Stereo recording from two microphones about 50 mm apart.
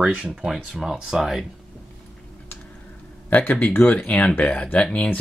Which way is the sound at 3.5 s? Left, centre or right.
Left.